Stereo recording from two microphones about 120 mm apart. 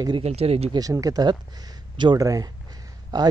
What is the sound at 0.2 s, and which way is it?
Speech, 60° right (ahead or behind).